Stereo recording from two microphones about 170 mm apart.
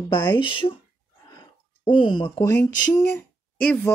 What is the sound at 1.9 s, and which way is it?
Speech, 25° left (ahead or behind).